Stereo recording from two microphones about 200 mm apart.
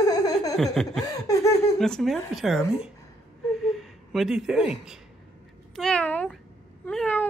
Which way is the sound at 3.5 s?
Centre (ahead or behind).